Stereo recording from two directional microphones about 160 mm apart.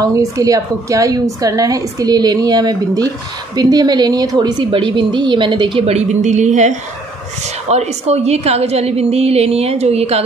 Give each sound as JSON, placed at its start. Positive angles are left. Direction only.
{"t": 0.0, "sound": "a woman's voice", "side_deg": -20}